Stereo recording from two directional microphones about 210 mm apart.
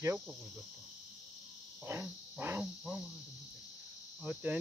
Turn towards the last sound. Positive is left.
turn(degrees=-5)  # may be behind; listen again after turning